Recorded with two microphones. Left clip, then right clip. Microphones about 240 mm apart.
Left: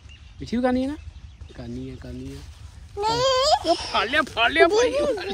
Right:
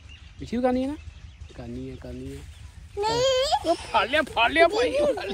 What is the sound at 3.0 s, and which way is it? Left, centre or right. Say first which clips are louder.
Speech: left 2 dB; centre.